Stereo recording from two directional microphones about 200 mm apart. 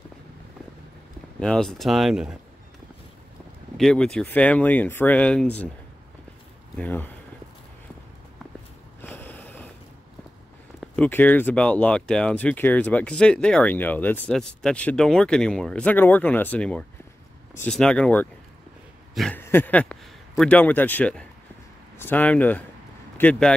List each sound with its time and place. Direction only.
1.4 s speech: 5° left (ahead or behind)
3.7 s speech: 5° left (ahead or behind)
6.8 s speech: 10° left (ahead or behind)
9.0 s a sound: 10° left (ahead or behind)
10.8 s a man's voice: 10° left (ahead or behind)